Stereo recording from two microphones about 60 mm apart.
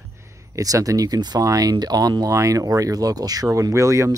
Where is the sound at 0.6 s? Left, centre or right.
Right.